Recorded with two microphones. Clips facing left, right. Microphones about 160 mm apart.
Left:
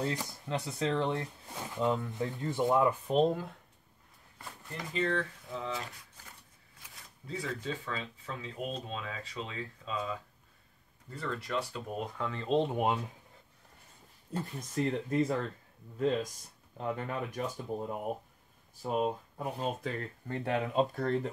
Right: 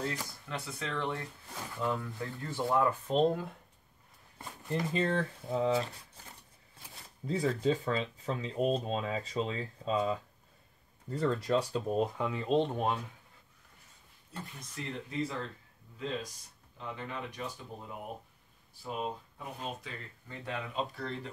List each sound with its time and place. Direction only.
0.0 s speech: 25° left (ahead or behind)
0.7 s speech: 35° left (ahead or behind)
1.0 s speech: 20° left (ahead or behind); by 3.4 s 5° left (ahead or behind)
4.4 s a sound: 20° right (ahead or behind)
4.9 s speech: 35° right (ahead or behind)
7.2 s speech: 35° right (ahead or behind)
12.2 s speech: 5° right (ahead or behind)
12.7 s speech: 20° left (ahead or behind)
14.3 s speech: 40° left (ahead or behind)
16.7 s speech: 45° left (ahead or behind)
18.8 s speech: 45° left (ahead or behind)